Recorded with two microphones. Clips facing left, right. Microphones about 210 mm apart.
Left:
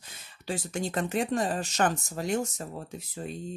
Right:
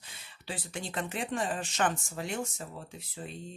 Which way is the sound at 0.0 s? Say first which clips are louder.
Left 7 dB; 45° left (ahead or behind).